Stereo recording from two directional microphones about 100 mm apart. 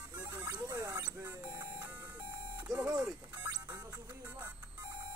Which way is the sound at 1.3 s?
25° right (ahead or behind).